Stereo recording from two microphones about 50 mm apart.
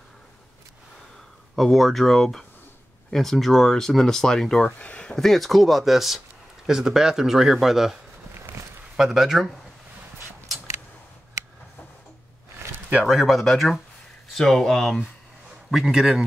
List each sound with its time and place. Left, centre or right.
1.5 s speech: centre
4.7 s speech: left
5.1 s speech: centre
13.0 s speech: centre
15.7 s speech: centre